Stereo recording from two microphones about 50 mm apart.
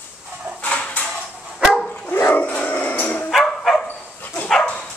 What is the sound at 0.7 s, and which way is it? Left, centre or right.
Dog, left.